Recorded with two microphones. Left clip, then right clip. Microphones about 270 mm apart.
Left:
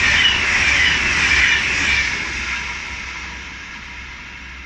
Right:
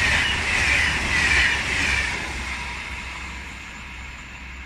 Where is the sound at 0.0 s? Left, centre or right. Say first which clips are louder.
Left 6 dB; right.